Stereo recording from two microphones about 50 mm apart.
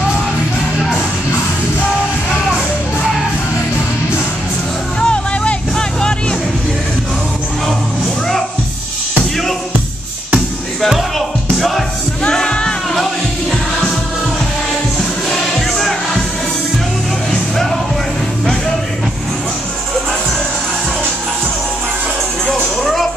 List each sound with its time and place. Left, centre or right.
5.0 s music: left
11.1 s music: centre
12.2 s music: centre
12.9 s music: centre
22.5 s music: centre